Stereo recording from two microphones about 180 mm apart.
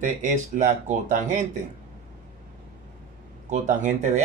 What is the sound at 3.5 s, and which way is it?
Speech, 40° right (ahead or behind).